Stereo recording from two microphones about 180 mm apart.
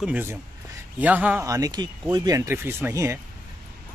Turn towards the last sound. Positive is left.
turn(degrees=-15)  # may be behind; listen again after turning